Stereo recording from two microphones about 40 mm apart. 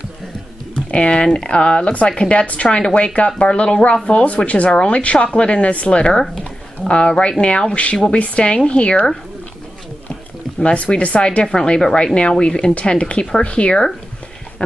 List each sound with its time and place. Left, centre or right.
0.7 s speech: left
2.8 s speech: left
6.2 s a sound: centre
6.9 s speech: left
10.6 s speech: left